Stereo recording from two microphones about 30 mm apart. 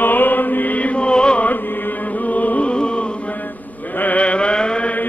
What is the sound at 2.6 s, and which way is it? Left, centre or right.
Chant, left.